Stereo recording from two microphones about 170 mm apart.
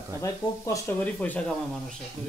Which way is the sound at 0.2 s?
15° left (ahead or behind).